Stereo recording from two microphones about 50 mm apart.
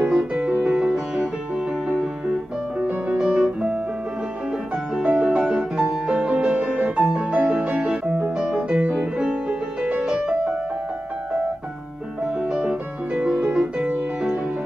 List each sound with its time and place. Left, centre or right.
0.0 s music: centre
3.2 s music: centre
5.0 s music: centre
5.4 s music: centre
5.8 s music: right
12.4 s music: centre